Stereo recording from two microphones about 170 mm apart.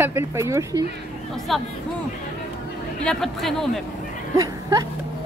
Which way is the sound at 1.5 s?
Centre (ahead or behind).